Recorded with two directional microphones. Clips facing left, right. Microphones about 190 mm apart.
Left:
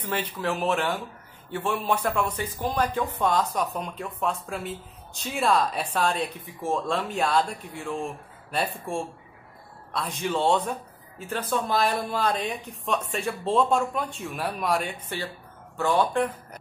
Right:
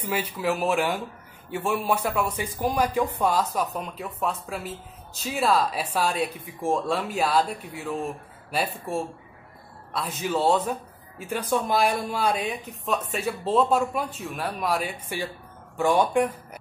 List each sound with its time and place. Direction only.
0.0 s speech: 10° right (ahead or behind)